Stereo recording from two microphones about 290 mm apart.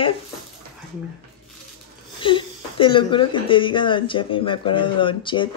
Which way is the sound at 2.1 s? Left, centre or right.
Centre.